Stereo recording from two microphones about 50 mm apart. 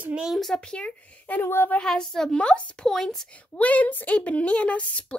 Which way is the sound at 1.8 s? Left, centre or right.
Centre.